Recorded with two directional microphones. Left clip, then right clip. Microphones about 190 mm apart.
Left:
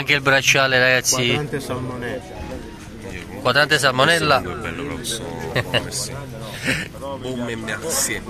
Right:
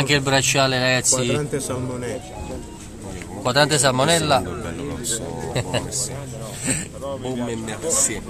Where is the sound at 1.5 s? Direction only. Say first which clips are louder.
Even; 20° right (ahead or behind).